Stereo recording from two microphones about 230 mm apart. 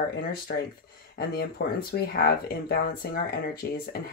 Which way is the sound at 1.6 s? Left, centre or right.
Left.